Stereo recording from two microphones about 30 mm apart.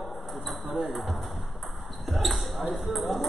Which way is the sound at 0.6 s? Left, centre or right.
Centre.